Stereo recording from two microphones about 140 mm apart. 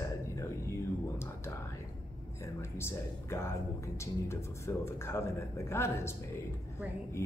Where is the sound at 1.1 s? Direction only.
20° left (ahead or behind).